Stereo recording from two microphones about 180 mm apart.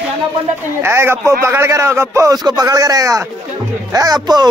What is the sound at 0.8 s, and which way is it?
Speech, 15° right (ahead or behind).